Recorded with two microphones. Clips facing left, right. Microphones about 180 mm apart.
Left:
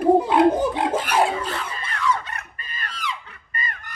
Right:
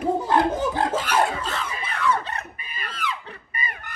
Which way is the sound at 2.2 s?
30° right (ahead or behind).